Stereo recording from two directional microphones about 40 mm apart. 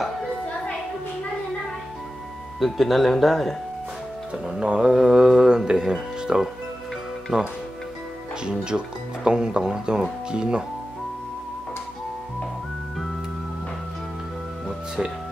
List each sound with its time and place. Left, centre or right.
2.6 s speech: centre
4.6 s speech: right